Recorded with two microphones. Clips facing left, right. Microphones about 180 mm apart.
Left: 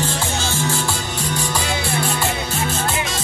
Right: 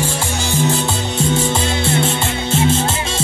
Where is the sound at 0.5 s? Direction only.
20° right (ahead or behind).